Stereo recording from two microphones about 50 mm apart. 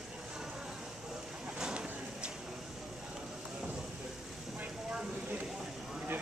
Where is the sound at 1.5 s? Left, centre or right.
Centre.